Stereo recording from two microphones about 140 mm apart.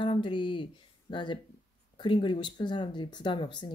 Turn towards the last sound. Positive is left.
turn(degrees=35)  # may be behind; listen again after turning